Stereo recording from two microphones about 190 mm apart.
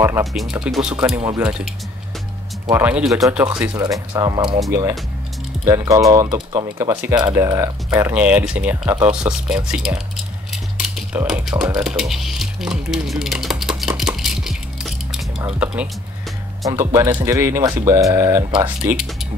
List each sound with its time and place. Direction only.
0.0 s speech: 15° right (ahead or behind)
0.3 s speech: 5° right (ahead or behind)
2.7 s speech: 5° right (ahead or behind)
3.7 s speech: 20° right (ahead or behind)
9.7 s a sound: 5° right (ahead or behind)
11.2 s speech: centre (ahead or behind)
11.7 s a sound: 5° right (ahead or behind)
15.6 s speech: 5° right (ahead or behind)